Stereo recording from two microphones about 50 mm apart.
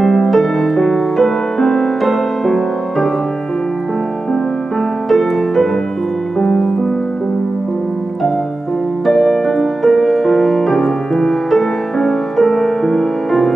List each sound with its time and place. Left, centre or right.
0.0 s music: centre
6.4 s music: centre
9.0 s music: centre